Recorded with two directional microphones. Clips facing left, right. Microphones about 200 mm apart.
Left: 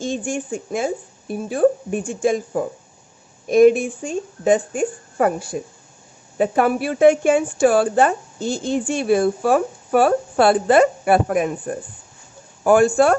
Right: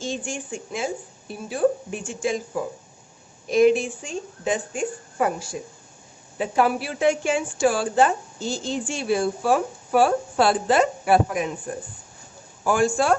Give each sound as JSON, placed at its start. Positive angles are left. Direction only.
{"t": 0.0, "sound": "a woman's voice", "side_deg": 55}